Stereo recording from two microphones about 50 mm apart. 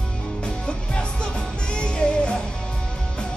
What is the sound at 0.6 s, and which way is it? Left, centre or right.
Music, left.